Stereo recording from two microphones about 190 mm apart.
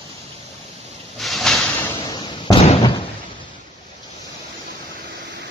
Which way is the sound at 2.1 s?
25° left (ahead or behind).